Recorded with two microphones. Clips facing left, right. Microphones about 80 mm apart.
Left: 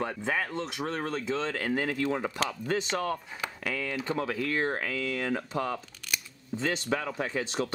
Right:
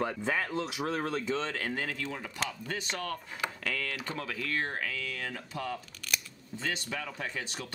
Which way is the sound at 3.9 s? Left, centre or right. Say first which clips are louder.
Left 6 dB; left.